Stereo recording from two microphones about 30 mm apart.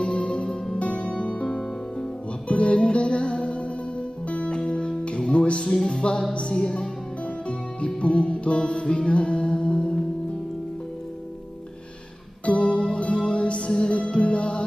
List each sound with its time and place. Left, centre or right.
0.0 s music: left
0.3 s music: left
0.7 s music: left
2.4 s music: left
2.7 s music: left
8.0 s music: left
12.4 s music: left